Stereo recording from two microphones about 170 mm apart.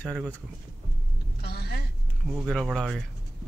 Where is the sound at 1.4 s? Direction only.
75° left (ahead or behind).